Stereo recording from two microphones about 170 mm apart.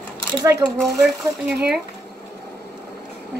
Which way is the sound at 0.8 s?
Centre (ahead or behind).